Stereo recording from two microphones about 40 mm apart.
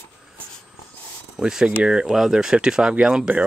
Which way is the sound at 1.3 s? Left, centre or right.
Centre.